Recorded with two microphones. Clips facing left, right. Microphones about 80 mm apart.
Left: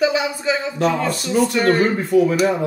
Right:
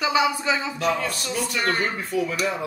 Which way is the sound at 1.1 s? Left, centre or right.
Left.